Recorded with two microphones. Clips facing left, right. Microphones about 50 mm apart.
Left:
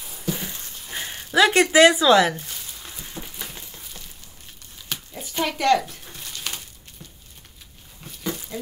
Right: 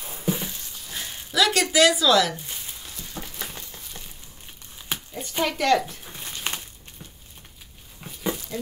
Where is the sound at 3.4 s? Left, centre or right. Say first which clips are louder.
Right 1 dB; centre.